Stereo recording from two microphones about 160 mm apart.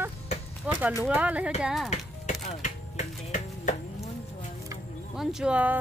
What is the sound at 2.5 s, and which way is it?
Chopping, 45° left (ahead or behind).